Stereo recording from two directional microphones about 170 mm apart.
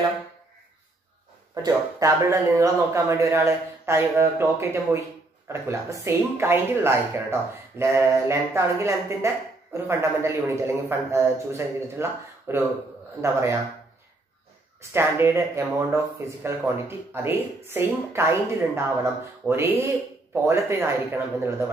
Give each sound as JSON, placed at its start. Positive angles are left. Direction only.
{"t": 1.5, "sound": "speech", "side_deg": -20}
{"t": 14.8, "sound": "speech", "side_deg": -15}
{"t": 19.4, "sound": "speech", "side_deg": -15}